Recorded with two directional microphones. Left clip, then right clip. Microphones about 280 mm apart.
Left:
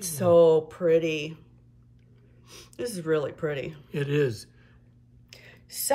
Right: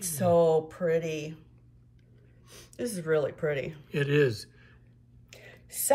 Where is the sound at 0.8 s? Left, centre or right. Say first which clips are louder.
Left 8 dB; centre.